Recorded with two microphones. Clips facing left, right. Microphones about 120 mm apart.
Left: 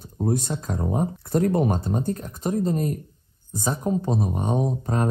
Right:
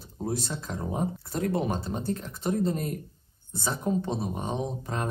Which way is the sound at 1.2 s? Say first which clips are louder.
Left 7 dB; 55° left (ahead or behind).